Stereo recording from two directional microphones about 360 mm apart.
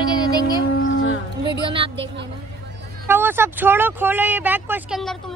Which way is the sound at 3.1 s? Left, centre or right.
Centre.